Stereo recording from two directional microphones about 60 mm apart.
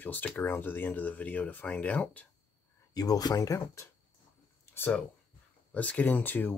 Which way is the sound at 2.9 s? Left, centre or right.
Left.